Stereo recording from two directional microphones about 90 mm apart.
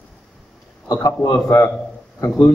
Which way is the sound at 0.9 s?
35° left (ahead or behind).